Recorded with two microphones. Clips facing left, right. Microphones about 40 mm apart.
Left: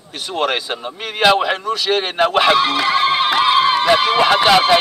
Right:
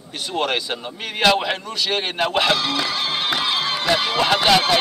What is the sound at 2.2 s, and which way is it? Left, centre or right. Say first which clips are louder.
Speech: left 6 dB; centre.